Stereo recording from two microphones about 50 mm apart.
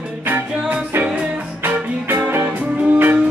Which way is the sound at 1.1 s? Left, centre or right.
Right.